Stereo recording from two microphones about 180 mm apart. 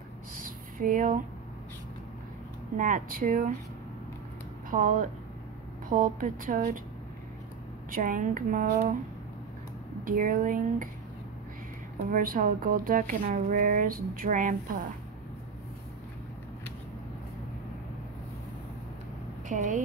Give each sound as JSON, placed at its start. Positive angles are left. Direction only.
{"t": 0.4, "sound": "a sound", "side_deg": -50}
{"t": 2.8, "sound": "speech", "side_deg": -50}
{"t": 4.6, "sound": "speech", "side_deg": -45}
{"t": 7.9, "sound": "speech", "side_deg": -50}
{"t": 10.0, "sound": "speech", "side_deg": -50}
{"t": 12.1, "sound": "speech", "side_deg": -50}
{"t": 19.5, "sound": "speech", "side_deg": -45}